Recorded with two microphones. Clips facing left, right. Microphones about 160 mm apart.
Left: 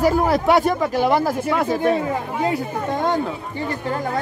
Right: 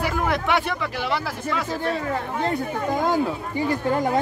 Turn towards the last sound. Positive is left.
turn(degrees=-5)  # may be behind; listen again after turning